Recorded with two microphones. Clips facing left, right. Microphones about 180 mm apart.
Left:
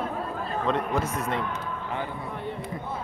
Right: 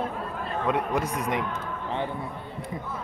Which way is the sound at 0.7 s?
10° right (ahead or behind).